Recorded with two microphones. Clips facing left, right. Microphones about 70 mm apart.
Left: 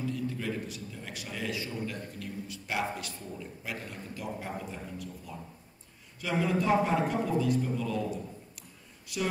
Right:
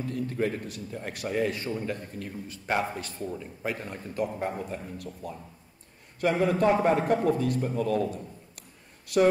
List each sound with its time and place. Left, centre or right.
0.0 s a man's voice: right